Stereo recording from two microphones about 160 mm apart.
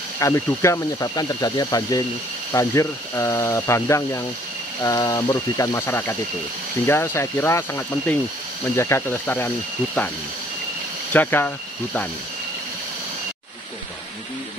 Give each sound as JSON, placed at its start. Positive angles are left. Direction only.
{"t": 0.2, "sound": "speech", "side_deg": 20}
{"t": 11.1, "sound": "speech", "side_deg": 15}